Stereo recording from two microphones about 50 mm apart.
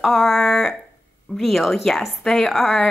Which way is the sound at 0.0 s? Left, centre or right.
Centre.